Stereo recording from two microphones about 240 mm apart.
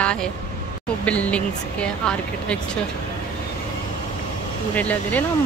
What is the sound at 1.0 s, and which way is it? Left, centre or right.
Speech, centre.